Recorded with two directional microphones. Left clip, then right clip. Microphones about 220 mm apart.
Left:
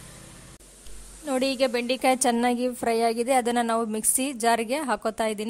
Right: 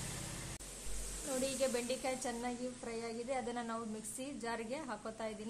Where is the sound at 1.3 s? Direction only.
45° left (ahead or behind).